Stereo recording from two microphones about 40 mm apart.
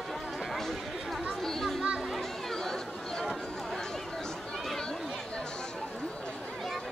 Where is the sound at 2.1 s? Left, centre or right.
Centre.